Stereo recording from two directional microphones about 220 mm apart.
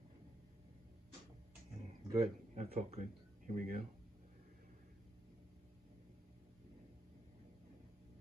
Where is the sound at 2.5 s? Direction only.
30° right (ahead or behind).